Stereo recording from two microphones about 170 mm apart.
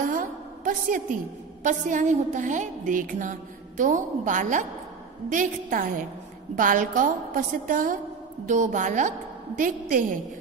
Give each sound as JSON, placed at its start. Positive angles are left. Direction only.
{"t": 0.0, "sound": "a woman's voice", "side_deg": -50}